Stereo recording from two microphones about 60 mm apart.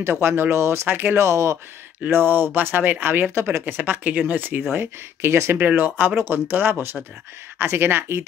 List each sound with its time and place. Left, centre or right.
0.0 s speech: right
0.8 s speech: right
1.1 s speech: right
2.0 s speech: right
4.7 s speech: right
5.8 s speech: right